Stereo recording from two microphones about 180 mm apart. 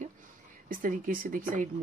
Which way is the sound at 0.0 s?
50° right (ahead or behind).